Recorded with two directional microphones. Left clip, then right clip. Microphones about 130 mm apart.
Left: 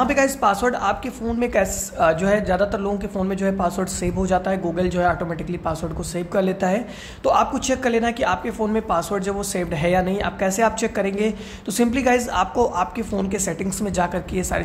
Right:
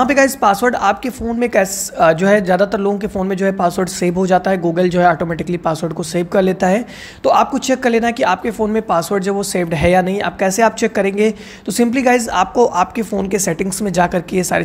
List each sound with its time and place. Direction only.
0.0 s speech: 35° right (ahead or behind)